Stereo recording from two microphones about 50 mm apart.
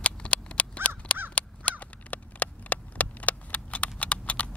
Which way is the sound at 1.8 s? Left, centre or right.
Left.